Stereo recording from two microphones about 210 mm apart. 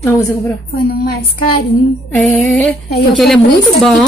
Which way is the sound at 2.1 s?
5° left (ahead or behind).